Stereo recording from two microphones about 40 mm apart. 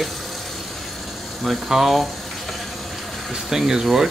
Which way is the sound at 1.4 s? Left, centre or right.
Centre.